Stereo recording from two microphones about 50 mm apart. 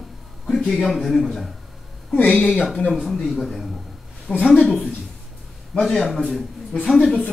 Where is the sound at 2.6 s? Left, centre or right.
Centre.